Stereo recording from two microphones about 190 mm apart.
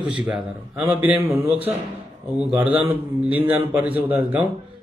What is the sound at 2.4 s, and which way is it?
A man's voice, 10° right (ahead or behind).